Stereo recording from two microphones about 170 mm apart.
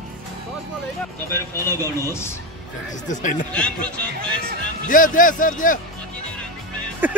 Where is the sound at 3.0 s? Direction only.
50° left (ahead or behind).